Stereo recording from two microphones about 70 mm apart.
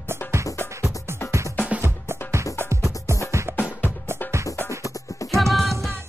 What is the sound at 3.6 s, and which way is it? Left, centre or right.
Music, left.